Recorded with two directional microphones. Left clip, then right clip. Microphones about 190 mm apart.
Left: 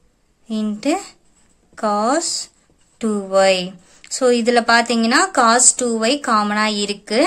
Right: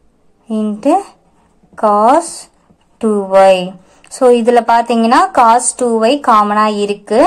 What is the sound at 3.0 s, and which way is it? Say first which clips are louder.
Speech: right 7 dB; 30° left (ahead or behind).